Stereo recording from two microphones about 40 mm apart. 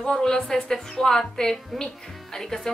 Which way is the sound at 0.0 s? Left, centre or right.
Centre.